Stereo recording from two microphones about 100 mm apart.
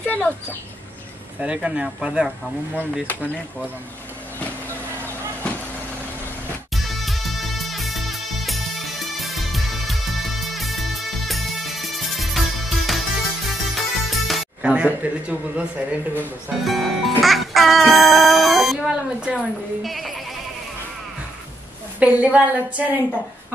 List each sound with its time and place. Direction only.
0.0 s speech: 20° left (ahead or behind)
1.4 s speech: 10° right (ahead or behind)
4.4 s vehicle: 20° left (ahead or behind)
6.7 s music: centre (ahead or behind)
14.7 s speech: 15° right (ahead or behind)
16.6 s music: centre (ahead or behind)
19.3 s speech: centre (ahead or behind)
22.0 s speech: 15° right (ahead or behind)